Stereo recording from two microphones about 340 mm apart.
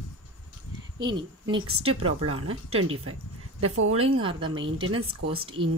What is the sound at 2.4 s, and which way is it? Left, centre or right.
Speech, right.